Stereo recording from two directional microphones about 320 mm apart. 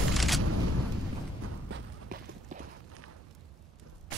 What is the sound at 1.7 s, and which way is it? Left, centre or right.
Walk, right.